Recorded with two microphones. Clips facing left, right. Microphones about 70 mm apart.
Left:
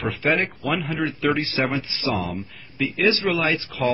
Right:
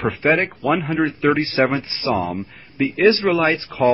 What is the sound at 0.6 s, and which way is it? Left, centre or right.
Speech, centre.